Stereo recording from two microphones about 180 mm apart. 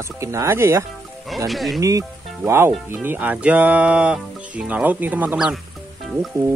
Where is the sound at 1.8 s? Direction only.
20° right (ahead or behind).